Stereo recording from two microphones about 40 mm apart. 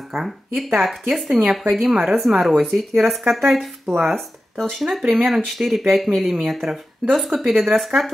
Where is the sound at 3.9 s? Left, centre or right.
Centre.